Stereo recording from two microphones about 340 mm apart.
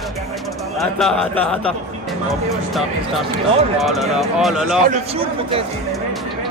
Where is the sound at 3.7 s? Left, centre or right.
Centre.